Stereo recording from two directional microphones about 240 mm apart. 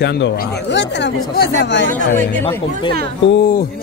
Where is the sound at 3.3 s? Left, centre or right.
Left.